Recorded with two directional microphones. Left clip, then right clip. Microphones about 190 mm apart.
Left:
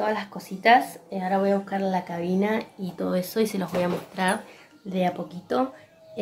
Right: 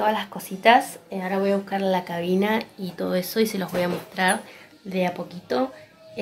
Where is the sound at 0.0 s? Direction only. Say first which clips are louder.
Right 3 dB; centre (ahead or behind).